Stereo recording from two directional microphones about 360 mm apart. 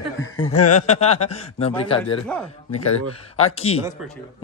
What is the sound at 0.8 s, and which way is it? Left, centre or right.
Speech, centre.